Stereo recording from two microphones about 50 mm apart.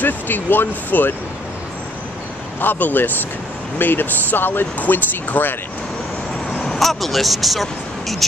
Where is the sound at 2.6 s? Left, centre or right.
Left.